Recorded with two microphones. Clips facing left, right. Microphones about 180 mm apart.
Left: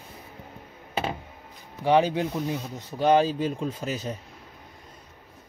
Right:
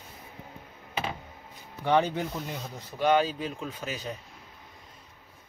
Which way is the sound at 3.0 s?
35° left (ahead or behind).